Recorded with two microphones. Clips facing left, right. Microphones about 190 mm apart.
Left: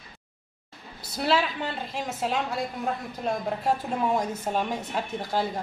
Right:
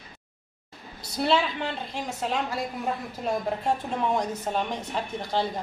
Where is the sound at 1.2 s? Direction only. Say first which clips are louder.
Right 1 dB; 5° left (ahead or behind).